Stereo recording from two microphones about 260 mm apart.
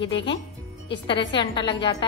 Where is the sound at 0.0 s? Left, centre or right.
Left.